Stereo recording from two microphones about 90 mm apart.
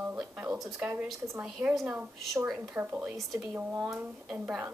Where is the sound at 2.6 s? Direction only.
20° right (ahead or behind).